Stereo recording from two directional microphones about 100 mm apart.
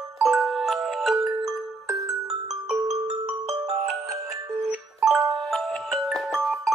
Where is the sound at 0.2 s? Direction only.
Centre (ahead or behind).